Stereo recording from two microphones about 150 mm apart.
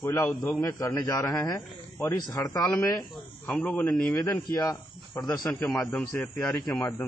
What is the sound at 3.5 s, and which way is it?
Speech, 10° left (ahead or behind).